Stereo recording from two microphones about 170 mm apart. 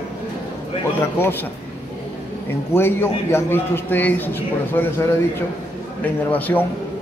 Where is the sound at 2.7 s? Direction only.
15° left (ahead or behind).